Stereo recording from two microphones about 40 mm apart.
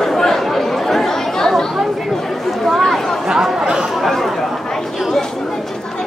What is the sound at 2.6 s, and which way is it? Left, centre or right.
Speech, centre.